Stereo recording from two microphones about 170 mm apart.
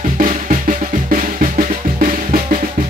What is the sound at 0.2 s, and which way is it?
Percussion, 50° right (ahead or behind).